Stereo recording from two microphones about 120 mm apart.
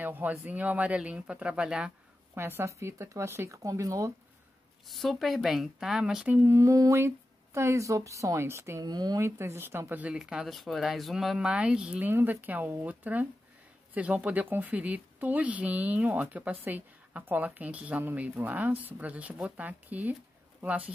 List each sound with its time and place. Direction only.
0.0 s speech: 15° right (ahead or behind)
2.3 s speech: 20° right (ahead or behind)
4.8 s speech: centre (ahead or behind); by 8.8 s 20° right (ahead or behind)
8.8 s speech: 35° right (ahead or behind); by 20.9 s 10° right (ahead or behind)